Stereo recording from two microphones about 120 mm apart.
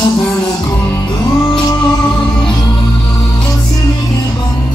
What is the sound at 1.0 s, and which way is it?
Music, 40° left (ahead or behind).